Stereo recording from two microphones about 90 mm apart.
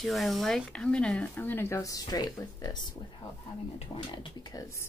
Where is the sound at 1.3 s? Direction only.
25° left (ahead or behind); by 2.8 s 45° left (ahead or behind).